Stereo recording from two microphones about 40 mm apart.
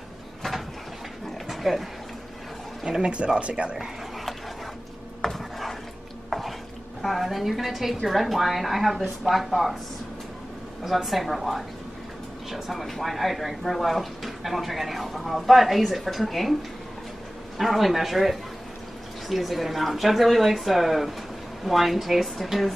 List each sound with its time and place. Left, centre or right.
1.5 s speech: centre
2.8 s speech: centre
3.3 s speech: right
5.2 s chopping: centre
7.0 s speech: centre
10.8 s speech: centre
17.6 s speech: centre